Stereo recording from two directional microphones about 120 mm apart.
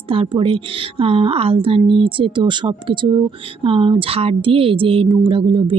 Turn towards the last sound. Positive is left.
turn(degrees=-45)  # may be behind; listen again after turning